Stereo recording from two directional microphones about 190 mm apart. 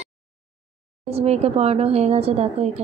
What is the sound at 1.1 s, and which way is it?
A woman's voice, 35° right (ahead or behind).